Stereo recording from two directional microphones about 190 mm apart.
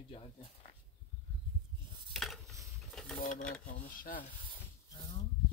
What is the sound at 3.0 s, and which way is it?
Sewing machine, centre (ahead or behind).